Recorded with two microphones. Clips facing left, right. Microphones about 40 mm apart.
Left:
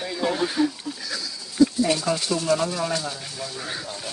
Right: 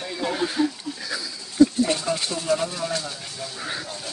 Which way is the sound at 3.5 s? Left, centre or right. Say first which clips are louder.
Right 3 dB; centre.